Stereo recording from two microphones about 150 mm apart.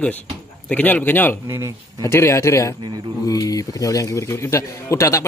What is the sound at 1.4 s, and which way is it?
Speech, 20° right (ahead or behind).